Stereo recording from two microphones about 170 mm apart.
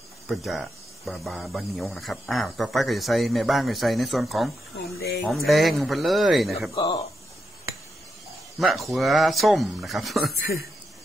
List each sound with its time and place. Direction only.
0.3 s speech: centre (ahead or behind)
4.9 s speech: 70° left (ahead or behind)
5.2 s speech: centre (ahead or behind)
6.7 s speech: 25° left (ahead or behind)
8.5 s speech: centre (ahead or behind)